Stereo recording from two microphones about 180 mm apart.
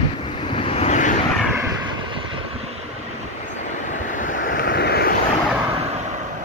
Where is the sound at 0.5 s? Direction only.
35° left (ahead or behind).